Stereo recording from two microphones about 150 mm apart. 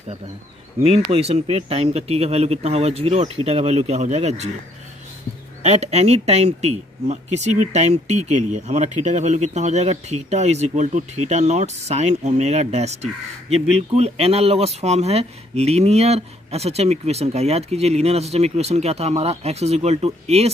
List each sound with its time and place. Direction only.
0.8 s speech: 40° right (ahead or behind)
5.6 s speech: 45° right (ahead or behind)